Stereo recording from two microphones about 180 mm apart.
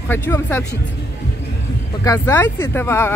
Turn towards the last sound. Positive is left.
turn(degrees=15)  # may be behind; listen again after turning